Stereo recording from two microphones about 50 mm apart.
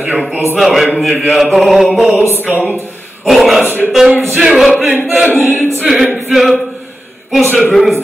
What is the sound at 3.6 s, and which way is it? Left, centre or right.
Speech, right.